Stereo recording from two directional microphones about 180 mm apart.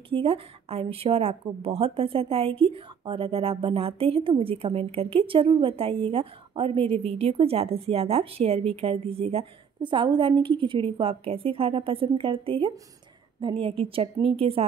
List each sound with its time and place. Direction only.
0.1 s a woman's voice: 30° right (ahead or behind)